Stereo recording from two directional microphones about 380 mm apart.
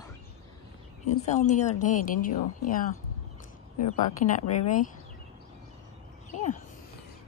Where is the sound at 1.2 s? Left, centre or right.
Centre.